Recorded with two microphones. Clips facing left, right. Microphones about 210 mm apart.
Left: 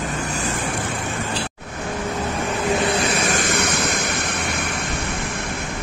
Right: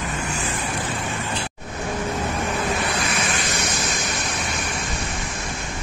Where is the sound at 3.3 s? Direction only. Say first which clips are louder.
Left 5 dB; 55° left (ahead or behind).